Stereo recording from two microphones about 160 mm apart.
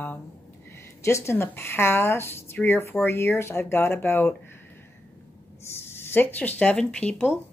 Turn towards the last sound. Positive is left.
turn(degrees=10)  # may be behind; listen again after turning